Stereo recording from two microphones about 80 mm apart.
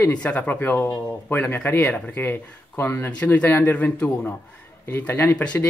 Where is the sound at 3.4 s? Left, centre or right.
Left.